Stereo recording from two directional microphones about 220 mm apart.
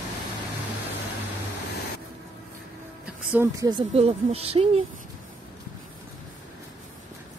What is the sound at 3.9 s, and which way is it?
Speech, 25° right (ahead or behind).